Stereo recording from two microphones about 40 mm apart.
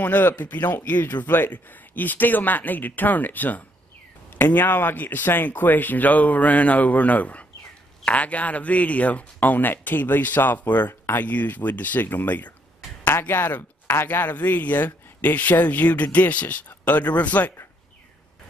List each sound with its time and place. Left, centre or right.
0.0 s speech: left
13.3 s speech: left
13.6 s speech: left
14.0 s speech: left